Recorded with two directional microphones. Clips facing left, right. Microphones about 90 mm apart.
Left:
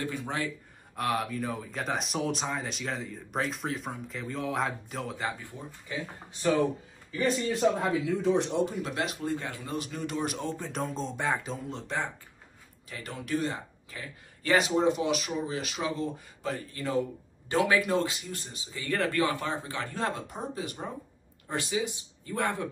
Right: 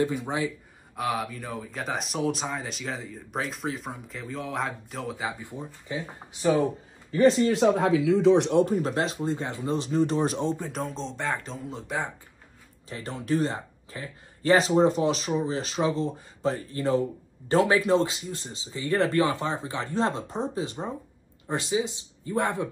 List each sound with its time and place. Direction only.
0.0 s speech: 15° right (ahead or behind)
0.9 s speech: centre (ahead or behind)
5.4 s speech: 20° right (ahead or behind)
7.4 s a man's voice: 90° right; by 10.6 s 25° right (ahead or behind)
10.6 s speech: centre (ahead or behind)
11.5 s speech: centre (ahead or behind)
12.9 s a man's voice: 30° right (ahead or behind)